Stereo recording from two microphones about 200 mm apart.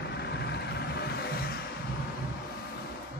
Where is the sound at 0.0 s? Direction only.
55° left (ahead or behind).